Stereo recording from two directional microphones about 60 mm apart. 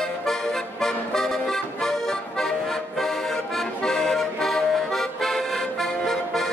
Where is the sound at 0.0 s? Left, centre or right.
Centre.